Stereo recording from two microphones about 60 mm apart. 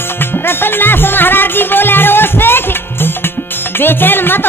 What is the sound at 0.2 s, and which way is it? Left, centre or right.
Music, left.